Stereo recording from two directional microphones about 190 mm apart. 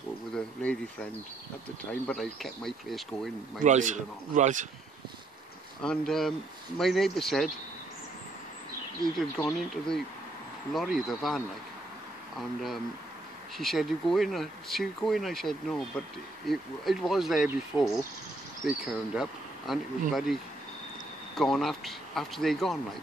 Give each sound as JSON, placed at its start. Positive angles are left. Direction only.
{"t": 0.3, "sound": "speech", "side_deg": 5}
{"t": 1.9, "sound": "speech", "side_deg": 5}
{"t": 3.6, "sound": "a man's voice", "side_deg": -40}
{"t": 5.8, "sound": "speech", "side_deg": 5}
{"t": 9.4, "sound": "speech", "side_deg": 5}
{"t": 21.4, "sound": "speech", "side_deg": 0}